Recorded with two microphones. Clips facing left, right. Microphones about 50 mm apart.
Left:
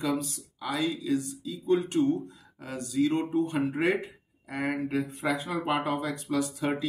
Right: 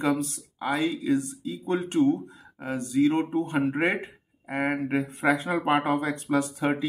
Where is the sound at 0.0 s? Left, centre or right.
Right.